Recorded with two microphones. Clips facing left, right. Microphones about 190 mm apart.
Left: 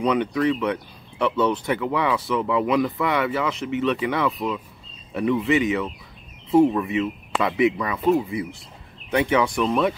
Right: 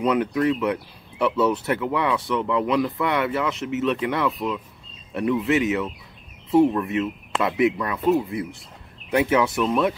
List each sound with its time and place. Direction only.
0.0 s speech: 5° right (ahead or behind)